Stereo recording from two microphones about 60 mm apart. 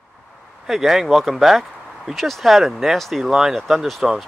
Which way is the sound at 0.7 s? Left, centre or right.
Centre.